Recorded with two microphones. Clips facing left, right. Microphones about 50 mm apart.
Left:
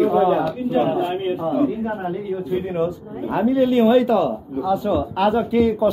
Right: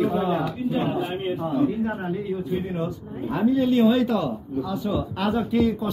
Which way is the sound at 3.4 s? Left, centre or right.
Left.